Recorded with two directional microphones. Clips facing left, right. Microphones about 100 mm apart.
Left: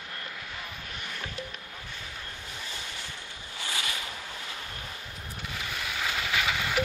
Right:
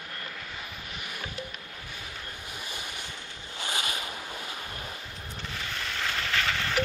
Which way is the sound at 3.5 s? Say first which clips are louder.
Right 2 dB; 20° right (ahead or behind).